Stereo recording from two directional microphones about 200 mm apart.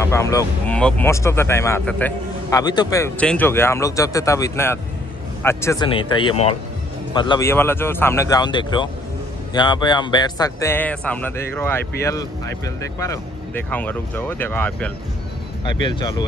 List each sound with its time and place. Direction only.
0.0 s a man's voice: 15° left (ahead or behind)
2.6 s a man's voice: 20° left (ahead or behind)
5.9 s speech: 25° left (ahead or behind)
7.4 s a man's voice: 10° left (ahead or behind)
15.6 s speech: 25° left (ahead or behind)